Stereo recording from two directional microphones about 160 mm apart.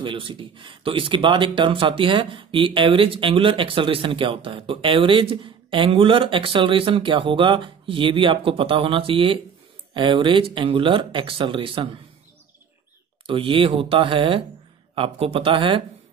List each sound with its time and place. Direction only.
0.0 s speech: 30° right (ahead or behind)
13.3 s speech: 35° right (ahead or behind)